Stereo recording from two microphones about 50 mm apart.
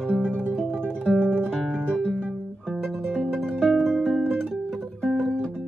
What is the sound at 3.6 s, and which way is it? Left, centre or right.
Music, centre.